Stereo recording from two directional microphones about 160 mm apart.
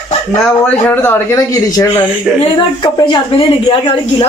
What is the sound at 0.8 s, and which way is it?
A woman's voice, 15° left (ahead or behind).